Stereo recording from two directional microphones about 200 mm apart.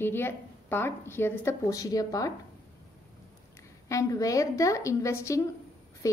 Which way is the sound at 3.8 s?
15° left (ahead or behind).